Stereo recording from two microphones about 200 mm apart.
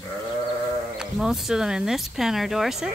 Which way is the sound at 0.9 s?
Centre (ahead or behind).